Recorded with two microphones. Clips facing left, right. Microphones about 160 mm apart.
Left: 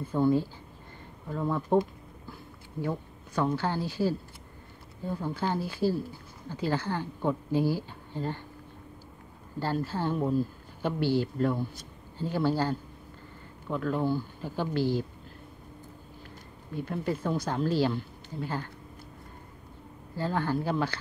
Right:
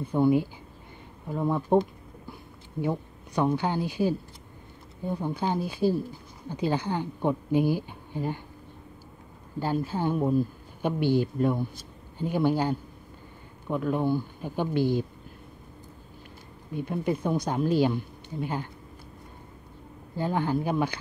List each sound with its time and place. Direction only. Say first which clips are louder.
0.0 s speech: right 2 dB; 15° right (ahead or behind)
2.8 s speech: right 3 dB; 15° right (ahead or behind)
9.6 s speech: right 2 dB; 15° right (ahead or behind)
16.7 s speech: right 3 dB; 15° right (ahead or behind)
20.2 s speech: right 2 dB; 15° right (ahead or behind)